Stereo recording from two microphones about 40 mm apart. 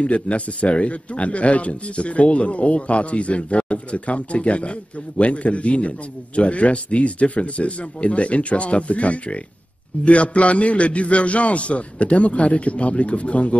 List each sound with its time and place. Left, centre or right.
0.0 s speech: left